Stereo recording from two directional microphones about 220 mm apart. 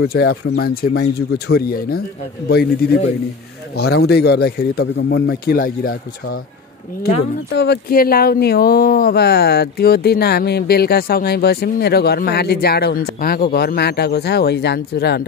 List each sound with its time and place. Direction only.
0.0 s speech: 45° left (ahead or behind)
7.5 s speech: 50° left (ahead or behind)